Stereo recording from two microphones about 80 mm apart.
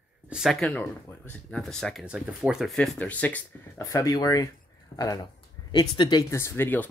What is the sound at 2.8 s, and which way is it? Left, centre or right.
Speech, centre.